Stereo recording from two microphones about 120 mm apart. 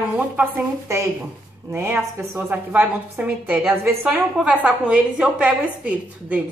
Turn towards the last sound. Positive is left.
turn(degrees=-10)  # may be behind; listen again after turning